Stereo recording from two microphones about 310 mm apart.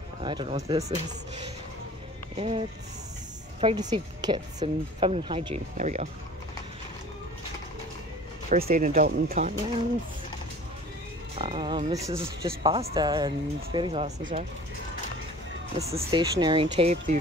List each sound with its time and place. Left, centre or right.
0.2 s speech: centre
2.3 s speech: centre
3.6 s speech: centre
8.5 s speech: right
11.3 s speech: centre
15.9 s speech: centre